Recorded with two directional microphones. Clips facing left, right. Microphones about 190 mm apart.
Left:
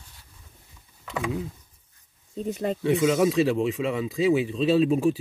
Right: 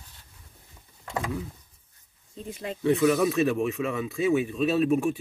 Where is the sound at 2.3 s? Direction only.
40° left (ahead or behind).